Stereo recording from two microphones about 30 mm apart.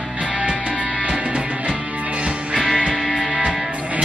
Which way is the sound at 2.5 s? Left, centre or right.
Centre.